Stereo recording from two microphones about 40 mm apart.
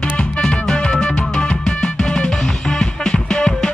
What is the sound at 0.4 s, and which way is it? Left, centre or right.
Music, centre.